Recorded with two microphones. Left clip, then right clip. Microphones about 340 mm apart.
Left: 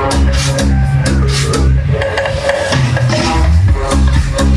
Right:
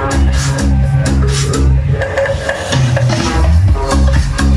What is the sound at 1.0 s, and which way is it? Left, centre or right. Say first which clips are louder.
Music: left 2 dB; centre.